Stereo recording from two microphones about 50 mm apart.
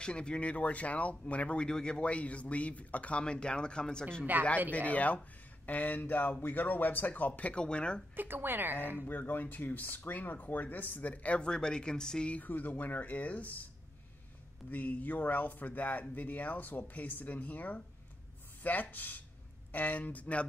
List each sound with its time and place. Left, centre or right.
0.0 s speech: centre
4.3 s speech: right
4.6 s speech: left
7.6 s speech: centre
8.2 s a woman's voice: right
9.1 s speech: left; by 12.3 s centre
12.3 s speech: left
14.7 s speech: left